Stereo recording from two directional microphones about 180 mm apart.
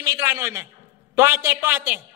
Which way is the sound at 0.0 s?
15° right (ahead or behind).